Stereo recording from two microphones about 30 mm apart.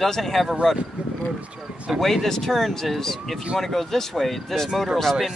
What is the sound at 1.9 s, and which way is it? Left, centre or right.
Speech, centre.